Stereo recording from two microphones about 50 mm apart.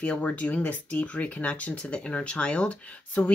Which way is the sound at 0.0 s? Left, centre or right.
Left.